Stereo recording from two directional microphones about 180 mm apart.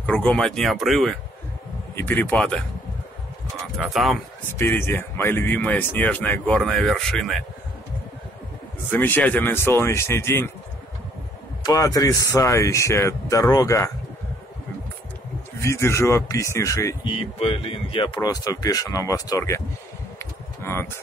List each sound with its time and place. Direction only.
0.0 s speech: 5° left (ahead or behind)
2.0 s speech: 10° left (ahead or behind)
3.8 s speech: centre (ahead or behind)
4.6 s speech: 15° left (ahead or behind)
8.9 s speech: 10° left (ahead or behind)
11.6 s speech: 20° left (ahead or behind)
15.6 s speech: 15° left (ahead or behind)
17.1 s speech: 30° left (ahead or behind)
20.2 s a sound: 15° left (ahead or behind)